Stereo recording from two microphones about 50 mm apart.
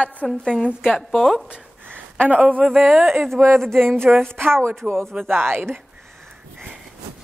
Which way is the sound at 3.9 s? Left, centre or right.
Right.